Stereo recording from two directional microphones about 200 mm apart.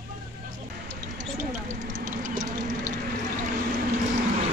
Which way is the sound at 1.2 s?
35° right (ahead or behind).